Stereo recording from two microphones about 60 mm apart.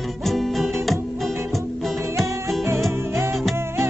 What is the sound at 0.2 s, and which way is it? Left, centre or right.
Music, centre.